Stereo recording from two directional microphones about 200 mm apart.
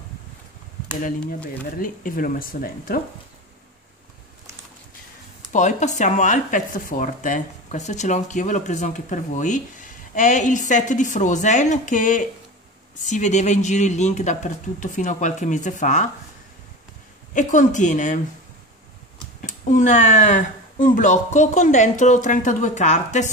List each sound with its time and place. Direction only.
1.8 s speech: 45° left (ahead or behind)
5.5 s speech: 35° left (ahead or behind)
17.3 s speech: 40° left (ahead or behind)
19.4 s speech: 40° left (ahead or behind)